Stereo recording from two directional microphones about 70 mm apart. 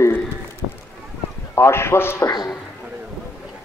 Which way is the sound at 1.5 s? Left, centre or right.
Left.